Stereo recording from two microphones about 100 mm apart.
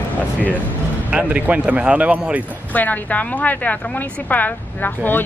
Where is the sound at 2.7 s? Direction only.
15° left (ahead or behind).